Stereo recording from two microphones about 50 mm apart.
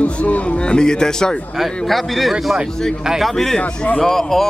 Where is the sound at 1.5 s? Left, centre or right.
Centre.